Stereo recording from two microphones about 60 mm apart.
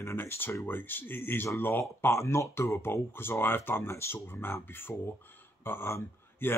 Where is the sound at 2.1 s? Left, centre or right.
Left.